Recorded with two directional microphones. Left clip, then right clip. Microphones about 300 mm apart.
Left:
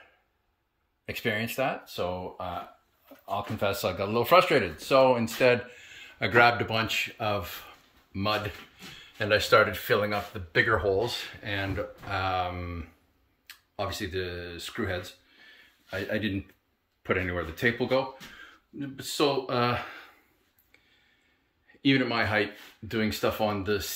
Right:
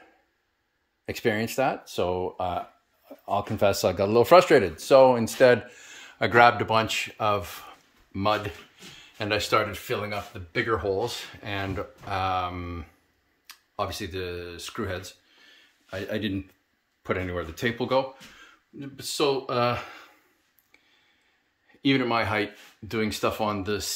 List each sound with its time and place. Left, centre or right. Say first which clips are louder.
1.0 s speech: right 3 dB; centre
19.1 s speech: right 1 dB; centre
21.8 s speech: right 2 dB; centre